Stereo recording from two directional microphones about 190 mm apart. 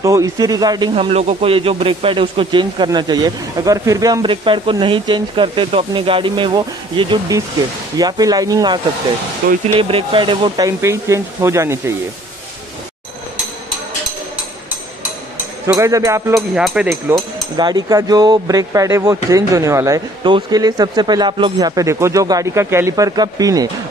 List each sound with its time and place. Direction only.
0.0 s speech: 15° right (ahead or behind)
15.6 s speech: 15° right (ahead or behind)
16.3 s speech: 5° right (ahead or behind)
17.6 s speech: 20° right (ahead or behind)